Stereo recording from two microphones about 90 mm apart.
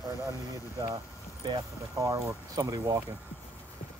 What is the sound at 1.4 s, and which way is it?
Speech, 50° right (ahead or behind).